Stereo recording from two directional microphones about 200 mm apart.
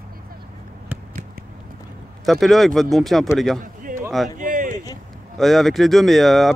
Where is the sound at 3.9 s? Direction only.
40° right (ahead or behind).